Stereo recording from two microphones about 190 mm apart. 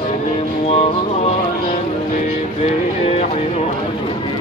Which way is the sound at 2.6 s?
35° left (ahead or behind).